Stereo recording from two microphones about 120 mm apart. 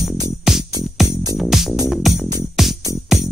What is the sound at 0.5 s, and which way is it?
Music, 5° right (ahead or behind).